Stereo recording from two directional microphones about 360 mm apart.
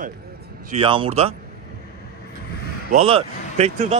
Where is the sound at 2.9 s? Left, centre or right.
Centre.